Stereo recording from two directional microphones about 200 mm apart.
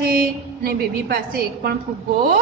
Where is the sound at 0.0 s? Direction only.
50° right (ahead or behind).